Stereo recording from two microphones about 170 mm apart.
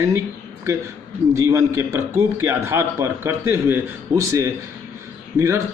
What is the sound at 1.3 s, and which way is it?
Speech, 20° right (ahead or behind).